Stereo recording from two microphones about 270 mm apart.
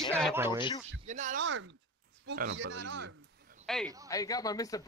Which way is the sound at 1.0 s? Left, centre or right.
Right.